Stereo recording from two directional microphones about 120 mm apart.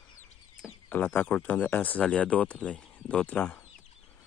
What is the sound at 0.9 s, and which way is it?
Speech, 15° left (ahead or behind).